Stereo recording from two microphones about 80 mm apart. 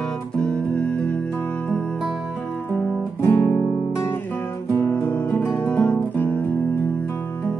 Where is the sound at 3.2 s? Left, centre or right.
Left.